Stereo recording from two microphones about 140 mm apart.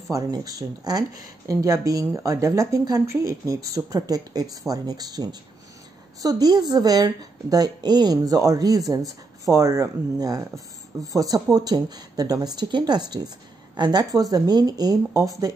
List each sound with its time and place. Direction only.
0.1 s speech: 25° right (ahead or behind)